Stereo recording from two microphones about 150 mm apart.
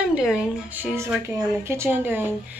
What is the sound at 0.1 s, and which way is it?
A woman's voice, 5° right (ahead or behind).